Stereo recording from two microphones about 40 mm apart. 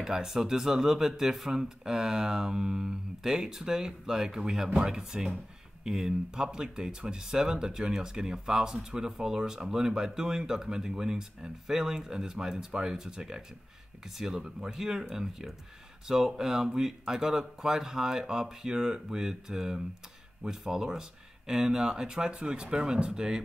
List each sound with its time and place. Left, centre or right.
0.0 s speech: centre